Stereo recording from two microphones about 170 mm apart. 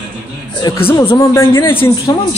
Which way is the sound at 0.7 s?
25° left (ahead or behind).